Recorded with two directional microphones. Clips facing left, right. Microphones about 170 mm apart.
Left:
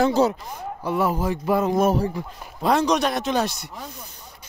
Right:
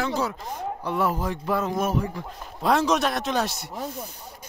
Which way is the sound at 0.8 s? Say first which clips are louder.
Left 4 dB; 5° left (ahead or behind).